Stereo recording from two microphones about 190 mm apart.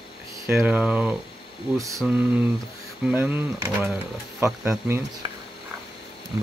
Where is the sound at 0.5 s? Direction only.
10° right (ahead or behind).